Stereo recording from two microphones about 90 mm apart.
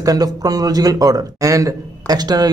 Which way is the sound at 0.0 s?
45° right (ahead or behind).